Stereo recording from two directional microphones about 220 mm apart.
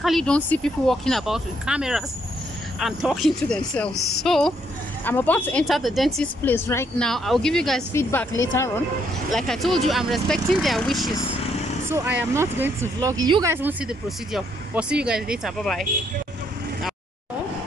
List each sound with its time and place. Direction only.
0.0 s speech: centre (ahead or behind)
9.3 s speech: centre (ahead or behind)
11.1 s speech: 15° left (ahead or behind)
11.9 s speech: 10° right (ahead or behind)